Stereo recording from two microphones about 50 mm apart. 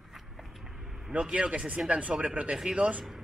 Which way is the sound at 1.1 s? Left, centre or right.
Right.